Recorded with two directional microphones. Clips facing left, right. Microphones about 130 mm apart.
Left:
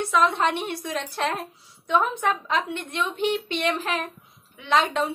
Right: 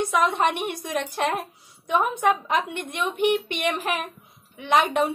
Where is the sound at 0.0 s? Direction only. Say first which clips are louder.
Even; 15° right (ahead or behind).